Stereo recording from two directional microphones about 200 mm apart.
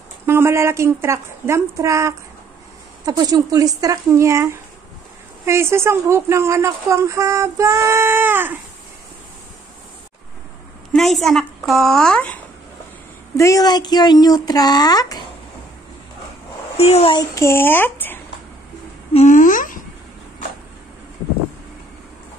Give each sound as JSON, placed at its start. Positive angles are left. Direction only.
{"t": 0.3, "sound": "a woman's voice", "side_deg": -15}
{"t": 10.9, "sound": "a woman's voice", "side_deg": 0}
{"t": 13.4, "sound": "speech", "side_deg": 15}
{"t": 16.7, "sound": "speech", "side_deg": 30}
{"t": 19.1, "sound": "speech", "side_deg": 40}